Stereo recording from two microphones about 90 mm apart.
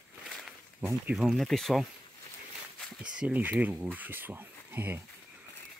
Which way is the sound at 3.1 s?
15° right (ahead or behind).